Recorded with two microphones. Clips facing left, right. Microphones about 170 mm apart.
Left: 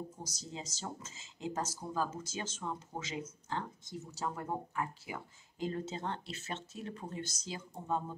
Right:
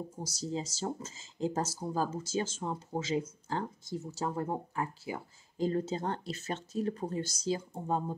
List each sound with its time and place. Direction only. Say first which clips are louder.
0.2 s speech: right 9 dB; 35° right (ahead or behind)